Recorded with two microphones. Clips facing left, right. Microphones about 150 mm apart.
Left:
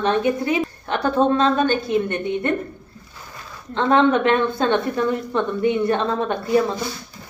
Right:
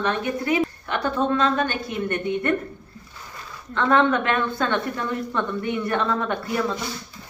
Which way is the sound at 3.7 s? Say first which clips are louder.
Left 3 dB; 25° left (ahead or behind).